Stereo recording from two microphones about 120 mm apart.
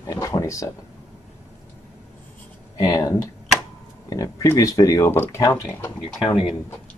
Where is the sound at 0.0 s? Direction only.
30° left (ahead or behind).